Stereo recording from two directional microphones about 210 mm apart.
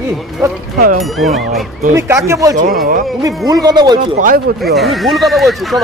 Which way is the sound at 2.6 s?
40° right (ahead or behind).